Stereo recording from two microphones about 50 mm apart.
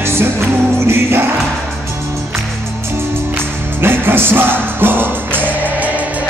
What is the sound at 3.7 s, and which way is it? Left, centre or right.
Music, right.